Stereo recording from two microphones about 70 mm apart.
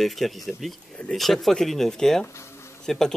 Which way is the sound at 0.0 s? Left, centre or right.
Centre.